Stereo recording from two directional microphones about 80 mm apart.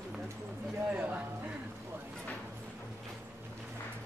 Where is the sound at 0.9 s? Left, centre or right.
Right.